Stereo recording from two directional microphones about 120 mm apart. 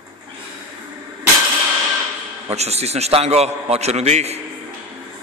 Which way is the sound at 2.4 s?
60° right (ahead or behind).